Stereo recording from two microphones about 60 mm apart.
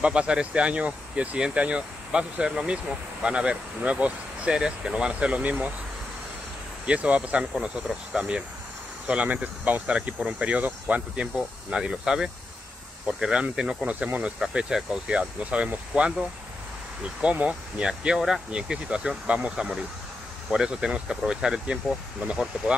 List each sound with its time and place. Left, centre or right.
0.0 s speech: centre
6.9 s speech: right
13.8 s speech: right
14.4 s speech: centre